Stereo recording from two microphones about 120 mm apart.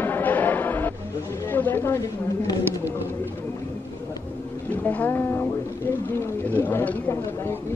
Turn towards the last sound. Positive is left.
turn(degrees=15)  # may be behind; listen again after turning